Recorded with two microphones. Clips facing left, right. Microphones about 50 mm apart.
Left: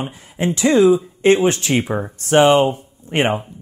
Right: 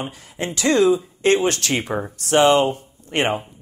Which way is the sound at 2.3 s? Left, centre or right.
Left.